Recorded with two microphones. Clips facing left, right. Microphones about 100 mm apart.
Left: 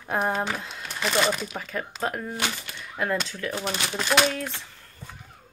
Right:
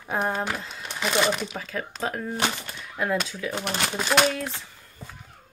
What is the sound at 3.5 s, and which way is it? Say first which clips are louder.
Speech: right 2 dB; 65° right (ahead or behind).